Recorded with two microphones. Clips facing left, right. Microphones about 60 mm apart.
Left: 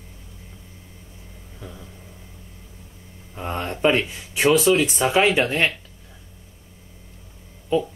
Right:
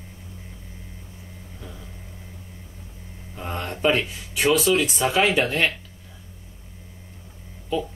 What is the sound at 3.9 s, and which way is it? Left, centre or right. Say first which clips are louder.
Speech: left 2 dB; left.